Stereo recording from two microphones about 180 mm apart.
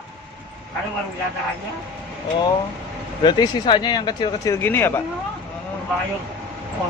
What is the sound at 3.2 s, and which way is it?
Speech, 25° left (ahead or behind).